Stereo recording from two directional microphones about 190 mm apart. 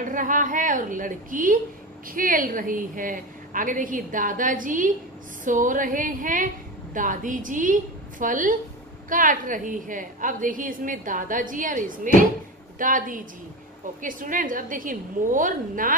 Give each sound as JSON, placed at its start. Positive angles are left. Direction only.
{"t": 0.0, "sound": "a woman's voice", "side_deg": -45}